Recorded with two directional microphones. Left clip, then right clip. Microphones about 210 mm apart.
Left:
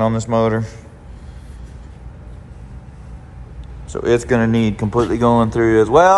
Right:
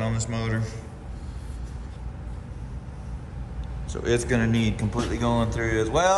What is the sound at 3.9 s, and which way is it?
A man's voice, centre (ahead or behind).